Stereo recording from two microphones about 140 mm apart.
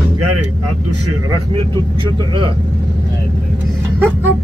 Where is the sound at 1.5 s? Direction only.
35° right (ahead or behind).